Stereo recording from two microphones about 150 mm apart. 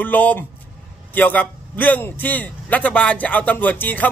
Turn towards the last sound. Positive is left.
turn(degrees=10)  # may be behind; listen again after turning